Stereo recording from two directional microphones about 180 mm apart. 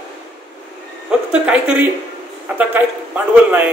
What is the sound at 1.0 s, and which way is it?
A woman's voice, 5° right (ahead or behind).